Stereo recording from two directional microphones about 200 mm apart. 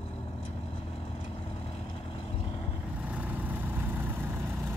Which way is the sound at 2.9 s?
5° right (ahead or behind).